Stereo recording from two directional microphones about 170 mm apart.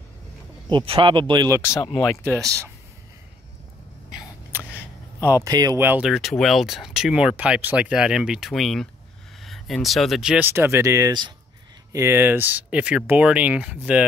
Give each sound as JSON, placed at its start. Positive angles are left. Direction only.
{"t": 0.7, "sound": "speech", "side_deg": -30}
{"t": 1.6, "sound": "speech", "side_deg": 20}
{"t": 2.2, "sound": "speech", "side_deg": -15}
{"t": 4.5, "sound": "a sound", "side_deg": -10}
{"t": 5.4, "sound": "speech", "side_deg": -20}